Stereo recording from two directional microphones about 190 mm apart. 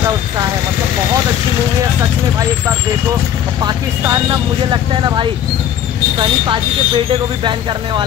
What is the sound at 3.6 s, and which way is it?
Speech, 20° right (ahead or behind).